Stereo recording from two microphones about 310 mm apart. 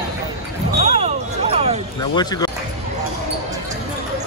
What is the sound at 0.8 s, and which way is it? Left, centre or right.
Basketball bounce, centre.